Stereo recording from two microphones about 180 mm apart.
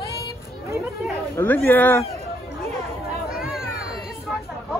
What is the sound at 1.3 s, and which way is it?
Speech, 10° left (ahead or behind).